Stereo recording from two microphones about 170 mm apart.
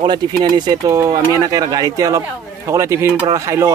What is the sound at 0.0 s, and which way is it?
A man's voice, 25° right (ahead or behind).